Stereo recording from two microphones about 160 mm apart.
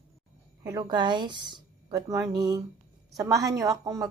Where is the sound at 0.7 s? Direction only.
25° right (ahead or behind).